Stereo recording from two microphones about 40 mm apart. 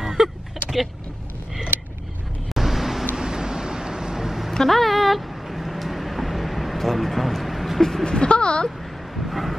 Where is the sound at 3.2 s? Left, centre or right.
Centre.